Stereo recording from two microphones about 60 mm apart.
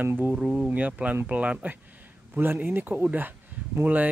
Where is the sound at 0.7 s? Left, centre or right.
Right.